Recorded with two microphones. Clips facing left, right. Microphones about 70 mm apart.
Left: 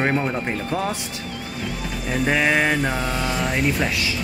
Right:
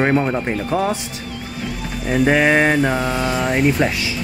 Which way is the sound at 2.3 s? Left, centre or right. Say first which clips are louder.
Right 3 dB; centre.